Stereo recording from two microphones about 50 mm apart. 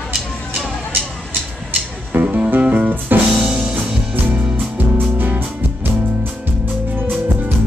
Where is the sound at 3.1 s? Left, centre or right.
Right.